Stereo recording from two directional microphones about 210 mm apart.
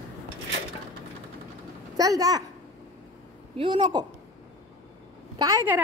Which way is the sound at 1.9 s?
15° right (ahead or behind).